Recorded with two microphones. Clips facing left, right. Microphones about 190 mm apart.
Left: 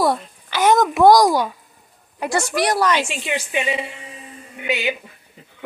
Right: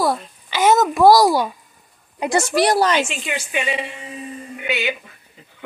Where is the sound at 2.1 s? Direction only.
20° right (ahead or behind).